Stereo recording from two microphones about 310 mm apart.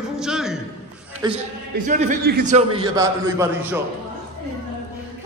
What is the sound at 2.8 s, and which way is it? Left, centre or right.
Speech, centre.